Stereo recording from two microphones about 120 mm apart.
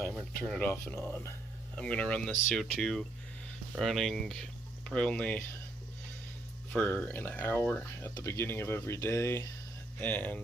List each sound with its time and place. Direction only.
0.4 s speech: 15° left (ahead or behind)
6.7 s speech: 10° left (ahead or behind)
9.9 s speech: 15° left (ahead or behind)